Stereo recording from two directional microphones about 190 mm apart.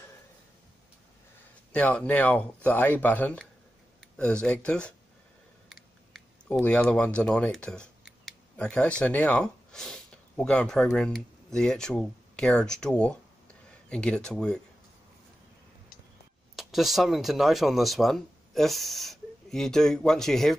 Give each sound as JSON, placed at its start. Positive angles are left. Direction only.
{"t": 1.7, "sound": "speech", "side_deg": 5}
{"t": 16.5, "sound": "speech", "side_deg": 0}